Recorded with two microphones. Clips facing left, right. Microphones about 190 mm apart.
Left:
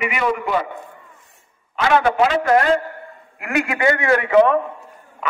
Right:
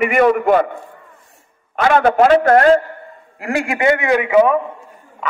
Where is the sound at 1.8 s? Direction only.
50° right (ahead or behind).